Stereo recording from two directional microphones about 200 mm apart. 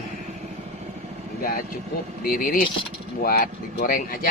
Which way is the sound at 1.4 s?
50° left (ahead or behind).